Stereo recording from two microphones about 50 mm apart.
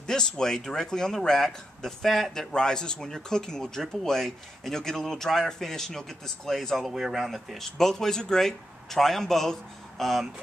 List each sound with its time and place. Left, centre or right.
0.0 s speech: centre
2.5 s speech: centre
6.9 s speech: centre
7.5 s speech: centre